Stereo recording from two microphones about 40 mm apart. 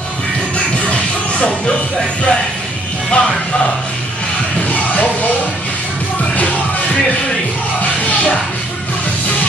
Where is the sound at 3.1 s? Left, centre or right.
Left.